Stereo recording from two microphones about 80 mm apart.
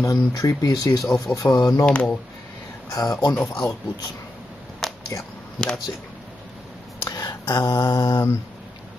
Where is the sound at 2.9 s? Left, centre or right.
Left.